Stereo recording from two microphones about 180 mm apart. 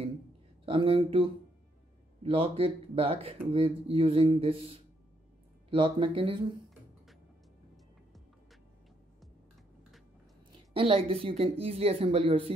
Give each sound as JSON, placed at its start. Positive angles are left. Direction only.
{"t": 0.7, "sound": "speech", "side_deg": -30}
{"t": 10.7, "sound": "speech", "side_deg": -30}